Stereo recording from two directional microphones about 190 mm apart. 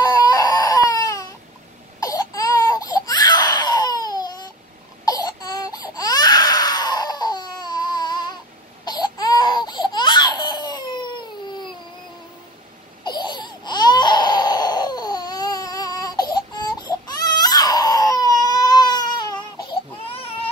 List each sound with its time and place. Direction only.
0.0 s crying: 20° left (ahead or behind)
5.0 s baby cry: 20° left (ahead or behind)
8.8 s a sound: 20° left (ahead or behind)
13.0 s baby cry: 25° left (ahead or behind)